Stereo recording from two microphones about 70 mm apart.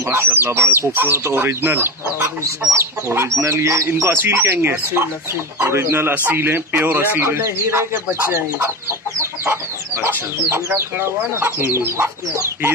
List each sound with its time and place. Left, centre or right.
0.0 s speech: right
4.1 s speech: right
9.2 s chicken: right
10.0 s speech: right